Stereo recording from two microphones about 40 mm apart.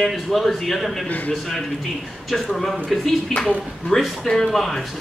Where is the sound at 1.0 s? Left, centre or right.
Left.